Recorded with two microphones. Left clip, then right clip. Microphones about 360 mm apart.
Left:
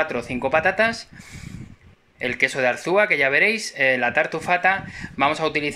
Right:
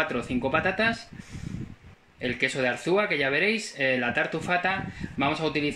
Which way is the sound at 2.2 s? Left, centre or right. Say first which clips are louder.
Left 6 dB; centre.